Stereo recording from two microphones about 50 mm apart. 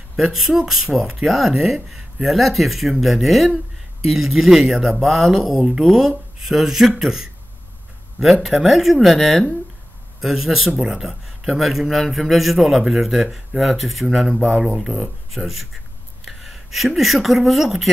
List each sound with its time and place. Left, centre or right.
0.1 s a man's voice: centre
10.7 s a man's voice: centre
15.3 s a man's voice: centre